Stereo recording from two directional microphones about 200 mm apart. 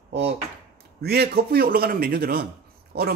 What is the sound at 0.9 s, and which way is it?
Speech, 55° right (ahead or behind).